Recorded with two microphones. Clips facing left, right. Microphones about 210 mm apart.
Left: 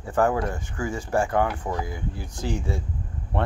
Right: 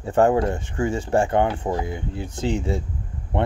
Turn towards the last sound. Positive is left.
turn(degrees=-20)  # may be behind; listen again after turning